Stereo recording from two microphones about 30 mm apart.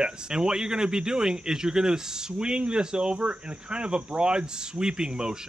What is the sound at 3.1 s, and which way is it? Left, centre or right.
Speech, right.